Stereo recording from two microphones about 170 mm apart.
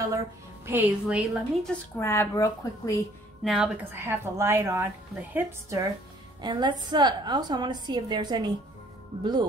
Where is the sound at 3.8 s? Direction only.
10° right (ahead or behind).